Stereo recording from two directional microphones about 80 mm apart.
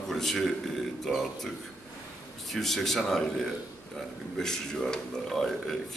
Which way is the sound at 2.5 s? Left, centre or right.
Centre.